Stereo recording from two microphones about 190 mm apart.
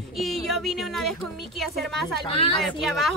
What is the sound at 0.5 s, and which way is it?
Speech, centre (ahead or behind).